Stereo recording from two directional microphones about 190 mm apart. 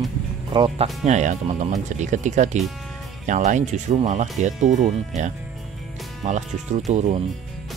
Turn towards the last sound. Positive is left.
turn(degrees=-35)  # may be behind; listen again after turning